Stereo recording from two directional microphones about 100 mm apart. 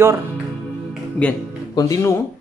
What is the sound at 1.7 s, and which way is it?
Speech, 35° left (ahead or behind).